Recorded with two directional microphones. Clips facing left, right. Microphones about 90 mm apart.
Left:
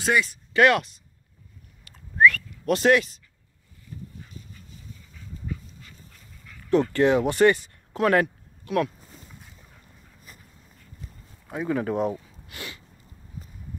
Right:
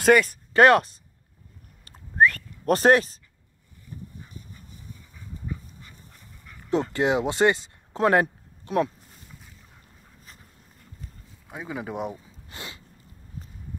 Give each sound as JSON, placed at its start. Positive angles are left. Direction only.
{"t": 0.0, "sound": "speech", "side_deg": -50}
{"t": 1.9, "sound": "whistling", "side_deg": -40}
{"t": 6.7, "sound": "speech", "side_deg": -20}
{"t": 11.4, "sound": "speech", "side_deg": -5}
{"t": 12.4, "sound": "a sound", "side_deg": -25}